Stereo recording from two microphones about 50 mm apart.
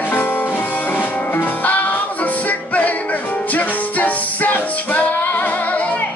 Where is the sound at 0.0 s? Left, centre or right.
Left.